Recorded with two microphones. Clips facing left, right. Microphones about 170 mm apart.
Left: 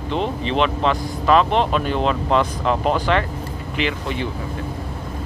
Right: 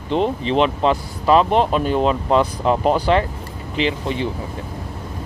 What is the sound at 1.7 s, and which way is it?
Speech, 10° right (ahead or behind).